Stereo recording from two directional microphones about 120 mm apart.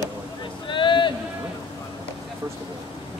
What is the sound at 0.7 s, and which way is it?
Speech, 45° left (ahead or behind).